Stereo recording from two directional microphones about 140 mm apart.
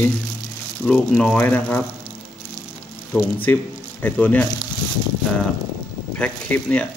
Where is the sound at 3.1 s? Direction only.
15° left (ahead or behind).